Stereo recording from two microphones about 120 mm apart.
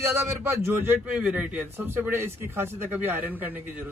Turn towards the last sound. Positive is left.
turn(degrees=-15)  # may be behind; listen again after turning